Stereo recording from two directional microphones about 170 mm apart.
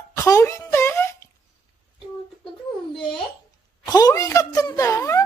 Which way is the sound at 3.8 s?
20° left (ahead or behind).